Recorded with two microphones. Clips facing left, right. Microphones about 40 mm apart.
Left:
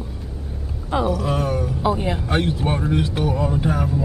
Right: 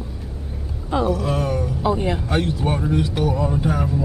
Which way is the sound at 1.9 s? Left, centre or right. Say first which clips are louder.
Right 1 dB; centre.